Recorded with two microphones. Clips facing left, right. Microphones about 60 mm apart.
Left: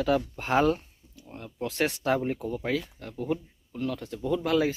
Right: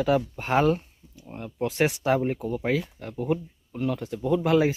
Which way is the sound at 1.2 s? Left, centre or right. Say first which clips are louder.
Right 5 dB; centre.